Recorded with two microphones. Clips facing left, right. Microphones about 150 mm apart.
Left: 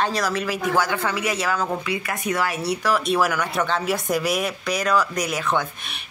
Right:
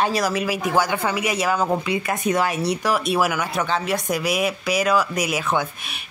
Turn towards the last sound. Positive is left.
turn(degrees=-5)  # may be behind; listen again after turning